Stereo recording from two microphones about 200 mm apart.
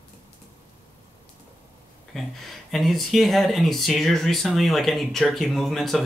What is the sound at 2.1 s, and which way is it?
Speech, centre (ahead or behind).